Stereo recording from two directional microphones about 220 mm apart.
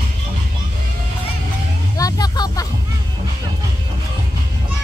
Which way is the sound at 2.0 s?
15° left (ahead or behind).